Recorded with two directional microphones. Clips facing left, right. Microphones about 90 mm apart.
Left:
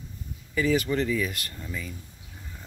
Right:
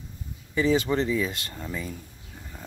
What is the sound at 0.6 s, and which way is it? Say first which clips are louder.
Speech: right 2 dB; 25° right (ahead or behind).